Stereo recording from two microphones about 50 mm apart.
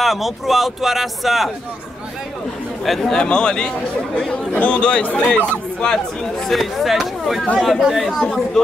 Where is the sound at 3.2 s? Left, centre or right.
Centre.